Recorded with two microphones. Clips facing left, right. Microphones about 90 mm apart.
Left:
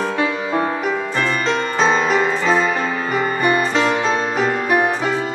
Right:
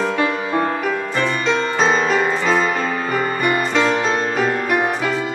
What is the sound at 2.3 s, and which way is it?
Music, 40° right (ahead or behind).